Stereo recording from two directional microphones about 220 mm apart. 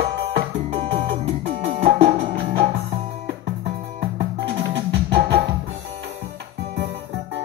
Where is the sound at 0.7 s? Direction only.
25° right (ahead or behind).